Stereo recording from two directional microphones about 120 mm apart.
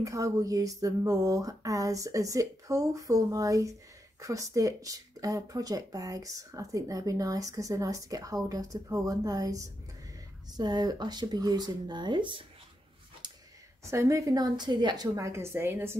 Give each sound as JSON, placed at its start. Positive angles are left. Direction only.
{"t": 0.0, "sound": "speech", "side_deg": -30}
{"t": 13.2, "sound": "a sound", "side_deg": -35}
{"t": 13.8, "sound": "speech", "side_deg": -25}